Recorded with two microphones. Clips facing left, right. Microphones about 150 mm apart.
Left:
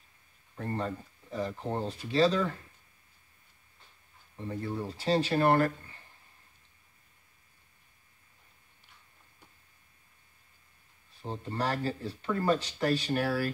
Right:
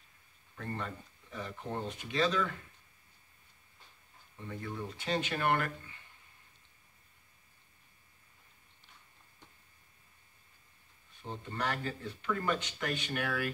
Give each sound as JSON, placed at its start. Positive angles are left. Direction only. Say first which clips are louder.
{"t": 0.6, "sound": "speech", "louder": "left 6 dB", "side_deg": 35}
{"t": 4.4, "sound": "speech", "louder": "left 6 dB", "side_deg": 35}
{"t": 11.2, "sound": "speech", "louder": "left 4 dB", "side_deg": 35}